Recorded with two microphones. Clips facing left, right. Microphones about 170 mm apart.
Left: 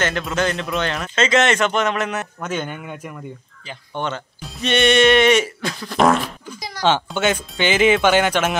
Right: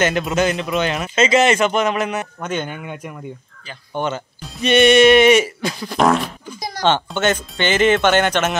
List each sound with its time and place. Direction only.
0.0 s a man's voice: 20° right (ahead or behind); by 8.5 s 5° left (ahead or behind)